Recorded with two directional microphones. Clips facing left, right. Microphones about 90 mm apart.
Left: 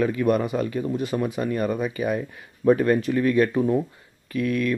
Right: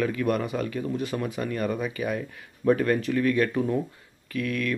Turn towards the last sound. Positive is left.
turn(degrees=25)  # may be behind; listen again after turning